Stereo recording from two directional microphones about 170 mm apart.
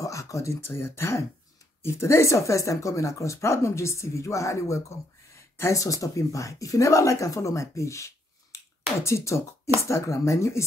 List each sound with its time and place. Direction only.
0.0 s speech: 20° left (ahead or behind)